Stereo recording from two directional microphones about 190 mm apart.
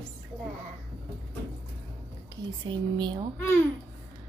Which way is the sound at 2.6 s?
25° right (ahead or behind).